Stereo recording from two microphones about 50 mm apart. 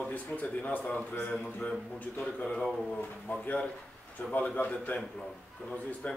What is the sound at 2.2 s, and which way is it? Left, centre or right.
Speech, centre.